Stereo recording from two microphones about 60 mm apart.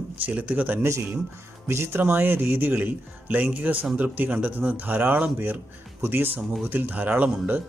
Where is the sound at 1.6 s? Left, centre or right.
Right.